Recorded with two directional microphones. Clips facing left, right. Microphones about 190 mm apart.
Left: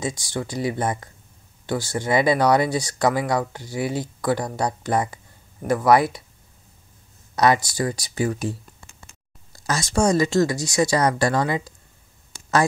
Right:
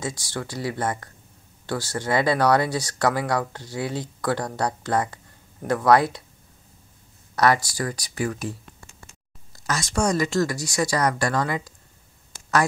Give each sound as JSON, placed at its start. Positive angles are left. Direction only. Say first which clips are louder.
{"t": 0.0, "sound": "speech", "louder": "left 3 dB", "side_deg": 15}
{"t": 7.3, "sound": "speech", "louder": "left 2 dB", "side_deg": 20}
{"t": 9.7, "sound": "speech", "louder": "left 3 dB", "side_deg": 30}